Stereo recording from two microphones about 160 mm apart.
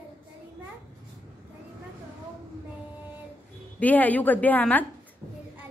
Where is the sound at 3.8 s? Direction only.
10° left (ahead or behind).